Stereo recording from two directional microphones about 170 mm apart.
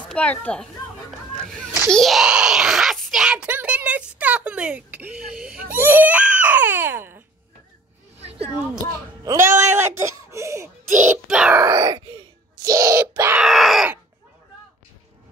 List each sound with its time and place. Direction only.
0.1 s a child's voice: 10° left (ahead or behind)
1.9 s speech: centre (ahead or behind)
8.2 s a sound: 35° right (ahead or behind)
9.2 s speech: 20° right (ahead or behind)
11.1 s speech: 5° right (ahead or behind)
11.5 s grunt: 20° right (ahead or behind)
13.4 s groan: centre (ahead or behind)